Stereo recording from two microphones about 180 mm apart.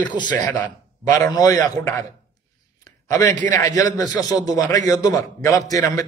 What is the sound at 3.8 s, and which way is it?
A man's voice, 20° left (ahead or behind).